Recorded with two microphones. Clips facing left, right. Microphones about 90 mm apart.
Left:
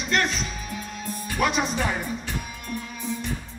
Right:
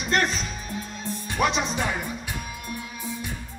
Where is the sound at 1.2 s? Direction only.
25° right (ahead or behind).